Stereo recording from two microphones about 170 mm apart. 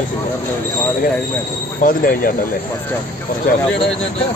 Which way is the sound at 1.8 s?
55° left (ahead or behind).